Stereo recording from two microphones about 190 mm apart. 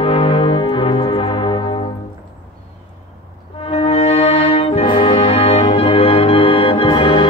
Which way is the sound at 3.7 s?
35° left (ahead or behind).